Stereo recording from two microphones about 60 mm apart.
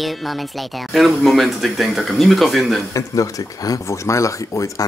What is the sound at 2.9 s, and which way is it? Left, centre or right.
Speech, left.